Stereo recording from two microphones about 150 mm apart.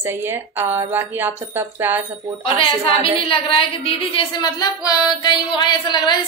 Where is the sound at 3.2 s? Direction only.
35° left (ahead or behind).